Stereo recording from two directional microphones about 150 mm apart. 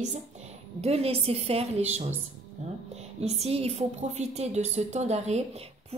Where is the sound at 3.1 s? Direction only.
45° right (ahead or behind).